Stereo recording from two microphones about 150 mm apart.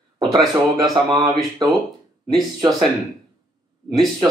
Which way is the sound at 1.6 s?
30° right (ahead or behind).